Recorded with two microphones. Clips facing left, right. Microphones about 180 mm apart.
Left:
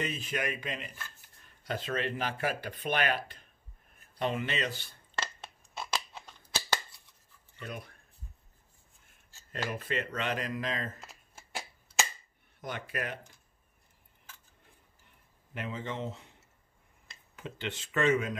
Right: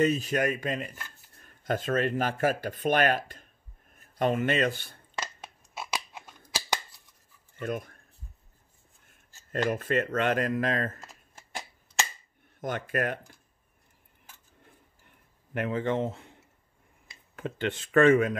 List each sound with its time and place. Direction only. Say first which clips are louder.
0.0 s speech: right 9 dB; 40° right (ahead or behind)
5.2 s scissors: right 1 dB; 10° right (ahead or behind)
7.5 s speech: right 9 dB; 50° right (ahead or behind)
9.5 s speech: right 8 dB; 45° right (ahead or behind)
11.3 s shuffling cards: right 1 dB; centre (ahead or behind)
12.5 s speech: right 7 dB; 45° right (ahead or behind)
15.5 s speech: right 9 dB; 55° right (ahead or behind)
17.4 s speech: right 8 dB; 50° right (ahead or behind)